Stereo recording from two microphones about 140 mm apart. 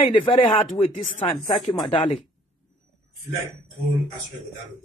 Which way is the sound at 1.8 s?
40° left (ahead or behind).